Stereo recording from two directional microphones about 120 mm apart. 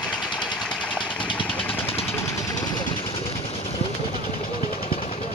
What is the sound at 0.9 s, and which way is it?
Vehicle, 45° left (ahead or behind).